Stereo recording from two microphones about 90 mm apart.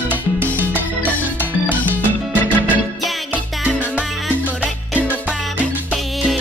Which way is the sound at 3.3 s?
15° right (ahead or behind).